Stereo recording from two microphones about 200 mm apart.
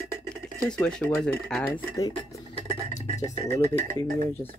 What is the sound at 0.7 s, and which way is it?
Speech, 5° left (ahead or behind).